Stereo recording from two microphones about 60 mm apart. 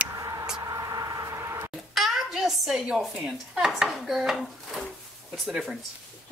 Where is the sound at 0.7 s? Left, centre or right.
Right.